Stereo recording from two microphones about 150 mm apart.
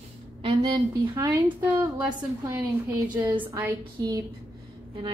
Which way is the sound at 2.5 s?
20° right (ahead or behind).